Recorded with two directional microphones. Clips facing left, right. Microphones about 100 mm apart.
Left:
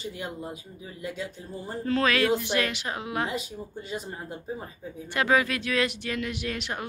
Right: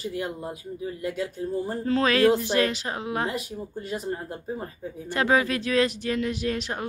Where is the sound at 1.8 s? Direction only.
30° right (ahead or behind).